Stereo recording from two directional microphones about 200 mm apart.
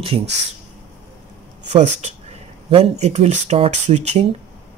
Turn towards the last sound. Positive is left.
turn(degrees=-35)  # may be behind; listen again after turning